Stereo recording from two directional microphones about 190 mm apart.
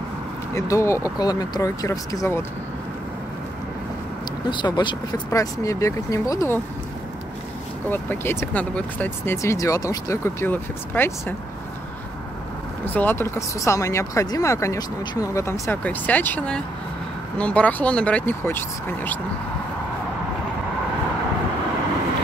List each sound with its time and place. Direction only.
0.6 s speech: 15° left (ahead or behind)
4.5 s speech: 25° left (ahead or behind)
7.9 s speech: 10° left (ahead or behind)
12.8 s speech: 10° left (ahead or behind)